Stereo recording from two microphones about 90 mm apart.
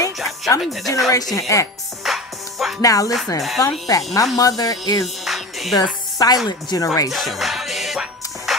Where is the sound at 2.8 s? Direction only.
40° left (ahead or behind).